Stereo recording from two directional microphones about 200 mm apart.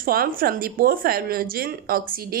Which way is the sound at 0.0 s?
45° right (ahead or behind).